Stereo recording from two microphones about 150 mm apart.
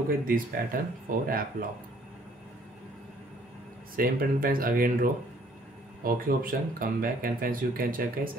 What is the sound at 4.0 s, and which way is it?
Speech, 75° right (ahead or behind).